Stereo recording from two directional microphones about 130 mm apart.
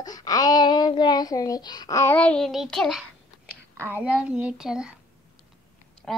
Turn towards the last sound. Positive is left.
turn(degrees=10)  # may be behind; listen again after turning